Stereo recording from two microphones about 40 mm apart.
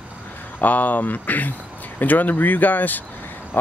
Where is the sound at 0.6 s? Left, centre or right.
Left.